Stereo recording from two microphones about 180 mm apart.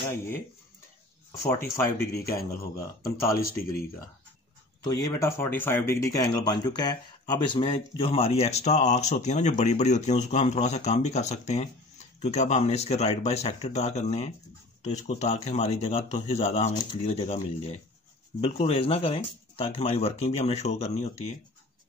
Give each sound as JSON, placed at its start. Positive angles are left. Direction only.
{"t": 1.5, "sound": "speech", "side_deg": 15}
{"t": 4.8, "sound": "speech", "side_deg": 20}